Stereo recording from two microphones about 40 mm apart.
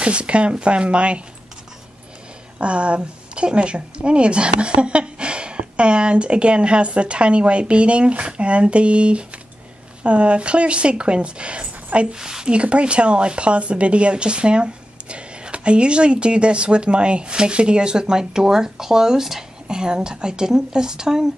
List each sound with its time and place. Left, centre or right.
0.0 s speech: right
2.6 s speech: right
12.2 s a woman's voice: centre
12.4 s speech: right